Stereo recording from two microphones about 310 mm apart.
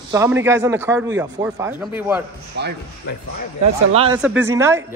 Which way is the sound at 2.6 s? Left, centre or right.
Right.